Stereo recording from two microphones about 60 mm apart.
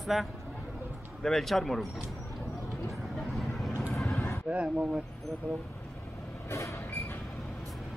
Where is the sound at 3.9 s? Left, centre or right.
Centre.